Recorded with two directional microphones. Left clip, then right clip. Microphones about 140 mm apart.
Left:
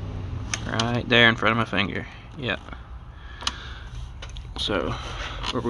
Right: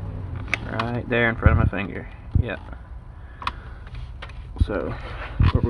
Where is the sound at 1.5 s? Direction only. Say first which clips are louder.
Left 3 dB; 45° left (ahead or behind).